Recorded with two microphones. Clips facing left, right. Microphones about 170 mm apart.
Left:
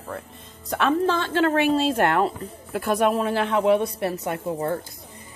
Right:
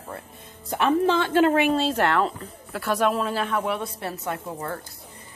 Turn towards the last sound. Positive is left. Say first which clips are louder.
# left 5 dB
turn(degrees=20)  # may be behind; listen again after turning